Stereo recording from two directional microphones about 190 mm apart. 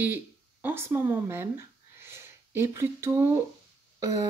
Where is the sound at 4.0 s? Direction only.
20° right (ahead or behind).